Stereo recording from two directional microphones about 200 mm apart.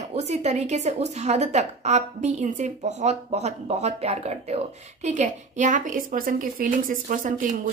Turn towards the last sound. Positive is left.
turn(degrees=-40)  # may be behind; listen again after turning